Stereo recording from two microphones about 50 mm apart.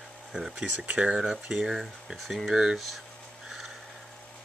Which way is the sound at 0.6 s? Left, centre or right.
Right.